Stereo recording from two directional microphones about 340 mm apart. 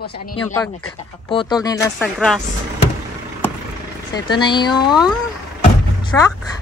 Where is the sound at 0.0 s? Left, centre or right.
Left.